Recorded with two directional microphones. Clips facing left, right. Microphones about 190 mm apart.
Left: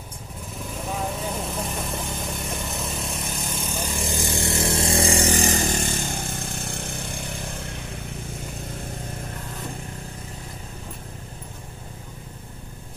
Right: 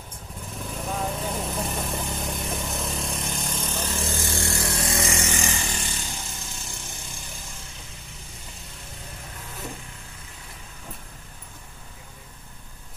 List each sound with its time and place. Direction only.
0.7 s vehicle: centre (ahead or behind); by 8.0 s 65° left (ahead or behind)